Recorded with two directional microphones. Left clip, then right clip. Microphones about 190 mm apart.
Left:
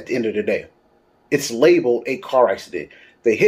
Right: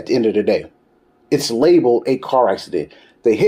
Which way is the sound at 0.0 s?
35° right (ahead or behind).